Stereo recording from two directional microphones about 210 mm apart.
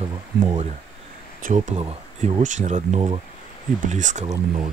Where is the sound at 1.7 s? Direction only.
25° right (ahead or behind).